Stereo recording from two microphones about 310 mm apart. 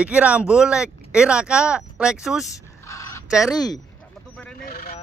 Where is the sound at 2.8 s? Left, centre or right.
Centre.